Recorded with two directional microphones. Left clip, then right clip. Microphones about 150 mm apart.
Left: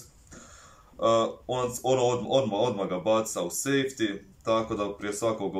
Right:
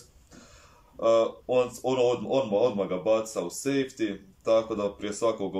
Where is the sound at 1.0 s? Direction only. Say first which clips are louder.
Right 1 dB; 10° right (ahead or behind).